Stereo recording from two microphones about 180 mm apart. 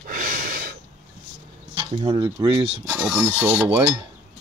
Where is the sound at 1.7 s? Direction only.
25° right (ahead or behind).